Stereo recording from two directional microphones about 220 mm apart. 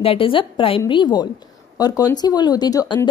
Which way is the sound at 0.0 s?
25° left (ahead or behind).